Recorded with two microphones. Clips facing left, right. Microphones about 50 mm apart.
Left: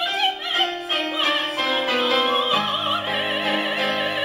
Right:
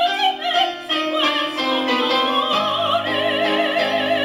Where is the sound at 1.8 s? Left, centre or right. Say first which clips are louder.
Right 2 dB; left.